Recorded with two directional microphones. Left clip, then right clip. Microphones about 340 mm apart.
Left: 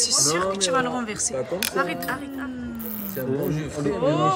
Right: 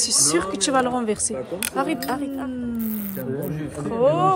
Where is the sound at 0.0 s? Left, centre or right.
Centre.